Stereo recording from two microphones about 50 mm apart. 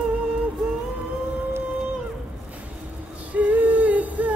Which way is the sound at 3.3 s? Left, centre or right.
Right.